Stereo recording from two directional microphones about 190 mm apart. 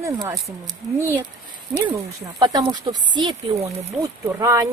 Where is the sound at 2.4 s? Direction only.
25° right (ahead or behind).